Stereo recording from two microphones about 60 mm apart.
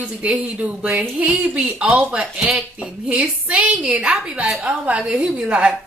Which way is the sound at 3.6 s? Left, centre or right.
Centre.